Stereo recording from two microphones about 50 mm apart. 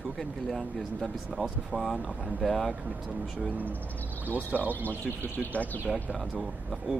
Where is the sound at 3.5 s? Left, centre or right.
Right.